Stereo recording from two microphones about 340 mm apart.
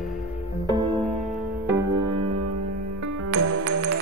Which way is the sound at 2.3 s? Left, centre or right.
Right.